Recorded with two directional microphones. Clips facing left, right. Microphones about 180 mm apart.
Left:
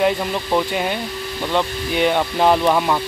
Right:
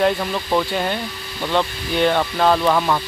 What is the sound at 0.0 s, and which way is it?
Speech, 10° left (ahead or behind).